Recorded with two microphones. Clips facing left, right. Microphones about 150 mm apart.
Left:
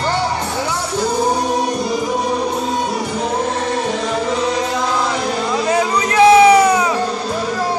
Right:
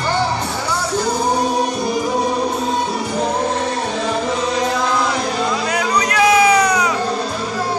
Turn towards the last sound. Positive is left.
turn(degrees=30)  # may be behind; listen again after turning